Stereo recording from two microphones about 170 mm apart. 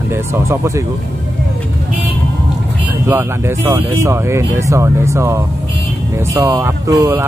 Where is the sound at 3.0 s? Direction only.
15° right (ahead or behind).